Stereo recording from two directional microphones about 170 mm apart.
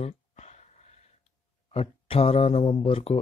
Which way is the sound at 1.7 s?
35° left (ahead or behind).